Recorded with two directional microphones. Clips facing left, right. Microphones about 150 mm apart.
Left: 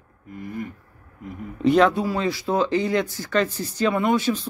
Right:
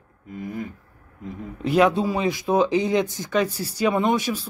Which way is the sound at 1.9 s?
20° right (ahead or behind).